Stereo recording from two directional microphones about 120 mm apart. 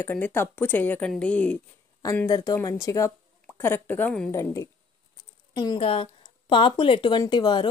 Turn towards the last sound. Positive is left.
turn(degrees=40)  # may be behind; listen again after turning